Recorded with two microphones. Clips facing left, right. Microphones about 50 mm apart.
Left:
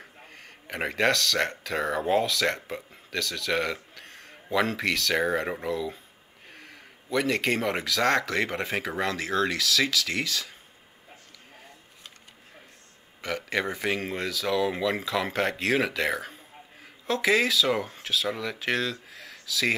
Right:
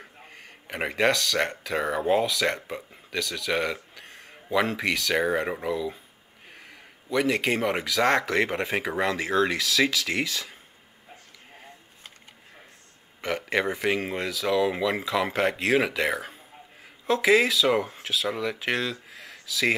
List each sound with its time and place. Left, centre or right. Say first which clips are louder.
0.3 s speech: even; centre
6.5 s speech: even; centre
13.2 s speech: right 3 dB; right